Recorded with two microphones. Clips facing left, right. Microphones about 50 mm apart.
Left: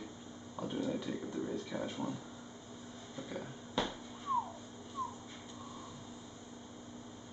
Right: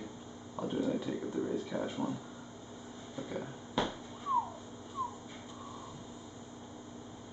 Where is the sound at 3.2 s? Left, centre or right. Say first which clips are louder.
Right 4 dB; centre.